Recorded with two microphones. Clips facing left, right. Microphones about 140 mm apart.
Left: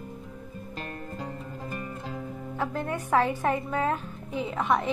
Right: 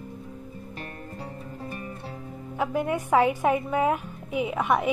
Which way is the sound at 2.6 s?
15° right (ahead or behind).